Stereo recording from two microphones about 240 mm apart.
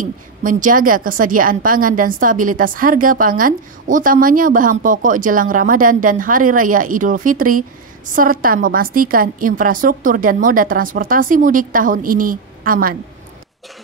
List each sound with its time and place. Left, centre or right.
0.0 s a woman's voice: right